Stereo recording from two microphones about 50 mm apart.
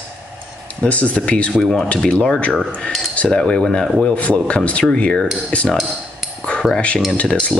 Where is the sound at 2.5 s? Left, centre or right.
Centre.